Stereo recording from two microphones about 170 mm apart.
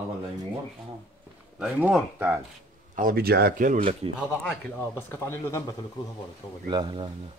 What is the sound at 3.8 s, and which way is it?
Speech, 35° right (ahead or behind).